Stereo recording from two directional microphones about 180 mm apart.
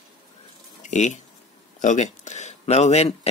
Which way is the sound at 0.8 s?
40° left (ahead or behind).